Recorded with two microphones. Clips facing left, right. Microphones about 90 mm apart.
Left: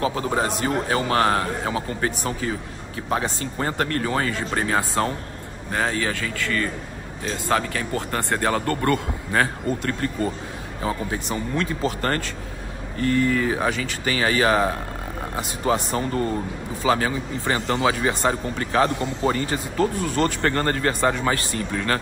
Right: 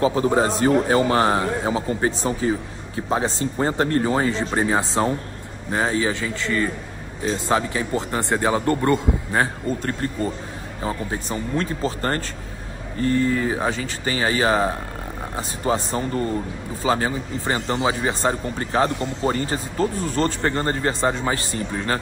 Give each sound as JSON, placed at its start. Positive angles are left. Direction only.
{"t": 0.0, "sound": "speech", "side_deg": -25}
{"t": 20.4, "sound": "speech", "side_deg": -20}